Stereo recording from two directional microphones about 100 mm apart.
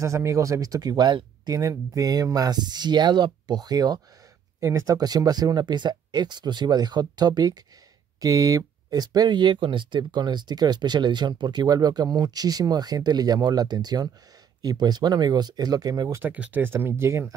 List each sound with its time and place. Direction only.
0.0 s speech: 30° right (ahead or behind)
16.2 s speech: 15° right (ahead or behind)